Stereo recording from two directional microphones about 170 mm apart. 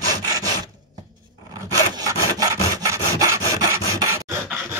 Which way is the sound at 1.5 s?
20° right (ahead or behind).